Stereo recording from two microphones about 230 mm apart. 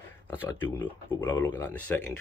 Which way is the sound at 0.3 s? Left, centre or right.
Centre.